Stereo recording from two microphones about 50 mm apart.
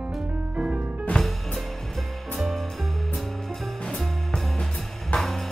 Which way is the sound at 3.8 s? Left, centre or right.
Centre.